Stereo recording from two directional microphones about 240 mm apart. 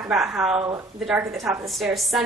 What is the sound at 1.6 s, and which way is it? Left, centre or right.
Speech, centre.